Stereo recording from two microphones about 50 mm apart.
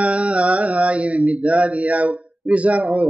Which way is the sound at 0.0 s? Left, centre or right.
Right.